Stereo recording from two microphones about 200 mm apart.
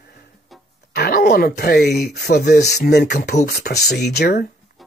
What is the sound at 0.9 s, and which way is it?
Speech, 50° left (ahead or behind).